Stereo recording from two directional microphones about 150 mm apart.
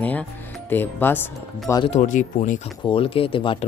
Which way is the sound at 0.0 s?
10° left (ahead or behind).